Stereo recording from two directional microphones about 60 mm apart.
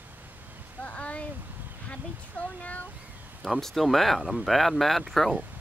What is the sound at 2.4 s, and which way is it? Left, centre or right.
Speech, left.